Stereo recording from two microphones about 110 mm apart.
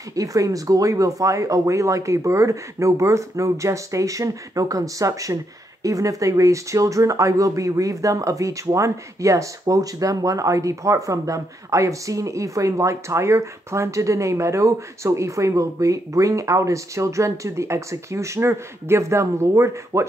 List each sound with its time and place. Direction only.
0.1 s speech: 30° right (ahead or behind)